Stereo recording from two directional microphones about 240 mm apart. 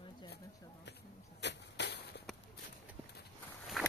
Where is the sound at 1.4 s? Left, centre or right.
Left.